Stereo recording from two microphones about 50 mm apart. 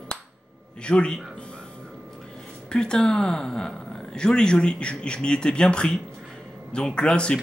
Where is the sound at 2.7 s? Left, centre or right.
Centre.